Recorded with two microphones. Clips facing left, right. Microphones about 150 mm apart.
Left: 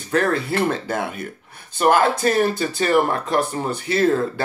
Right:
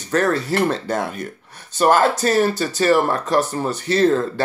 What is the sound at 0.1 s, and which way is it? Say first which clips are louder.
Speech: right 1 dB; 15° left (ahead or behind).